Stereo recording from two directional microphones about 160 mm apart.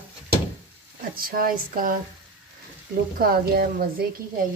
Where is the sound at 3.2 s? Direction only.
70° right (ahead or behind).